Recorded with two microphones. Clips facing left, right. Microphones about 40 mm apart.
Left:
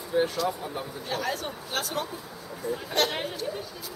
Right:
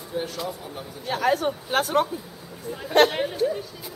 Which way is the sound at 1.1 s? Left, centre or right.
Right.